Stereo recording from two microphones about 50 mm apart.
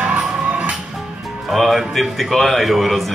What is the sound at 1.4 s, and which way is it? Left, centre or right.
Speech, centre.